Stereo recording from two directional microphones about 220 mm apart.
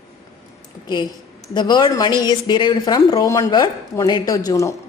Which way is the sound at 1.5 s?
20° left (ahead or behind).